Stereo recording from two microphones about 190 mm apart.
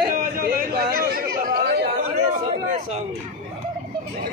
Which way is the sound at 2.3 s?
35° right (ahead or behind).